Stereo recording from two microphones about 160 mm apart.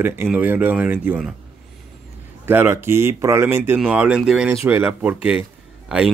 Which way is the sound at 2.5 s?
15° right (ahead or behind).